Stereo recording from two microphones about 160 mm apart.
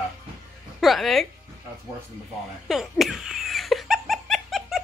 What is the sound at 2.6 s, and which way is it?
Speech, centre (ahead or behind).